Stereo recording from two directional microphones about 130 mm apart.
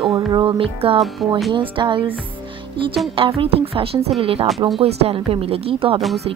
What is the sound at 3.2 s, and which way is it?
A woman's voice, 45° right (ahead or behind).